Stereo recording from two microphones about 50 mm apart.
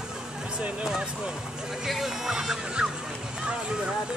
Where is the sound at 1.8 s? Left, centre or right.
Centre.